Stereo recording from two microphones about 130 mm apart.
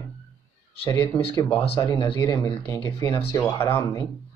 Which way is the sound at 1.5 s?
45° left (ahead or behind).